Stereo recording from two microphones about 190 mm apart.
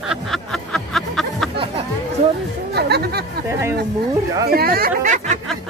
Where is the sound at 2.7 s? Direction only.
60° right (ahead or behind).